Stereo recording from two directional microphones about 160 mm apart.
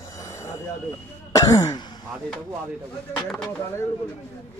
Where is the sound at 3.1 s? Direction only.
5° left (ahead or behind).